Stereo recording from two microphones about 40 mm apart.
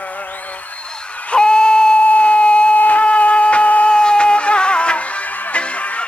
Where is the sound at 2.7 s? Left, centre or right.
Left.